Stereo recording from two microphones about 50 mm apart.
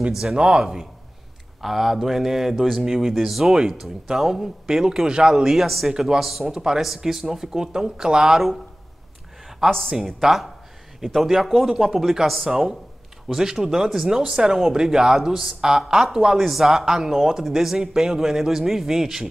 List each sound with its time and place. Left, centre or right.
0.2 s speech: centre
9.7 s speech: centre
9.9 s speech: centre